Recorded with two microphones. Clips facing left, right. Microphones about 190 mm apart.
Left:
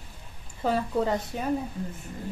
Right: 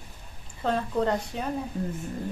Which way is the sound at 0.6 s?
5° left (ahead or behind).